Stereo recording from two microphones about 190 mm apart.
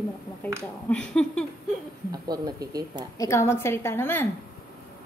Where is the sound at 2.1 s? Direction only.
20° right (ahead or behind).